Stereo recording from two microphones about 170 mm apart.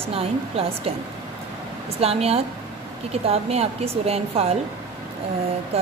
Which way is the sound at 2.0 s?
35° right (ahead or behind).